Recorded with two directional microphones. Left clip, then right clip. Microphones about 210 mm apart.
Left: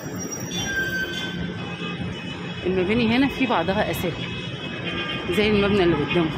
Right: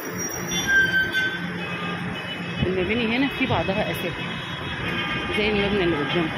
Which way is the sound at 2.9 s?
30° left (ahead or behind).